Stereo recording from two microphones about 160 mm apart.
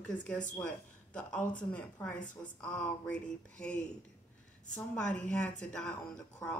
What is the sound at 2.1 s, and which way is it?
Speech, 55° left (ahead or behind).